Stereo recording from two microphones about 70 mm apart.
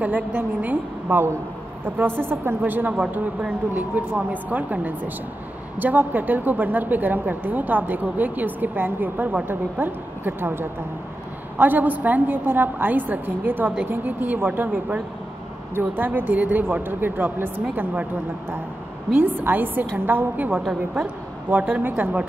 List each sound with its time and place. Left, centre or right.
0.0 s a woman's voice: right
19.1 s a woman's voice: right